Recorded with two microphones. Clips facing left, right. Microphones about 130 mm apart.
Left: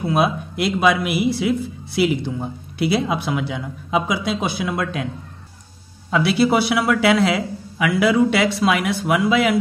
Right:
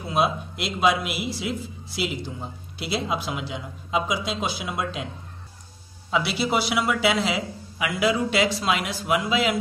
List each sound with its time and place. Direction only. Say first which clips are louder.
0.0 s a man's voice: left 4 dB; 60° left (ahead or behind)
6.0 s a man's voice: left 7 dB; 55° left (ahead or behind)